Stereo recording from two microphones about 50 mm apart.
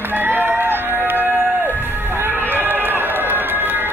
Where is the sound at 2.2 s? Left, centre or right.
Right.